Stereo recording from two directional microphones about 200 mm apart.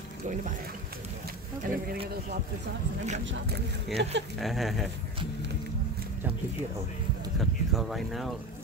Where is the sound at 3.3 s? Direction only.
55° right (ahead or behind).